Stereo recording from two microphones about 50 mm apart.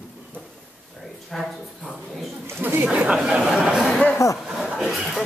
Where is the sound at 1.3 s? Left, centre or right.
Centre.